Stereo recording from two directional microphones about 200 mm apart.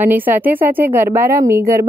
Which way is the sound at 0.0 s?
10° right (ahead or behind).